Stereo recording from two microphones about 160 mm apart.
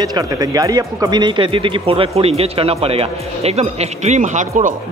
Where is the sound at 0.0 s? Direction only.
20° right (ahead or behind); by 4.7 s 55° right (ahead or behind).